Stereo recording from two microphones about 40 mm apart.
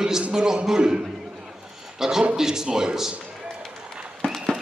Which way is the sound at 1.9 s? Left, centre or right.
Centre.